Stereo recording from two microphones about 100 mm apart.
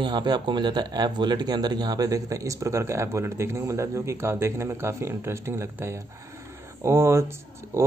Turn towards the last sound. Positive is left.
turn(degrees=-25)  # may be behind; listen again after turning